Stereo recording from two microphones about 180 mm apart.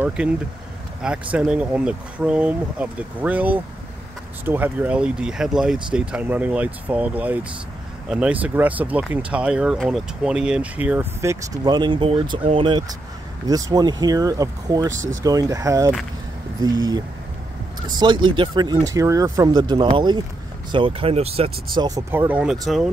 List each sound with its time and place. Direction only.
0.0 s speech: 5° right (ahead or behind)
1.3 s speech: 5° right (ahead or behind); by 21.5 s 35° right (ahead or behind)
21.7 s speech: 20° right (ahead or behind)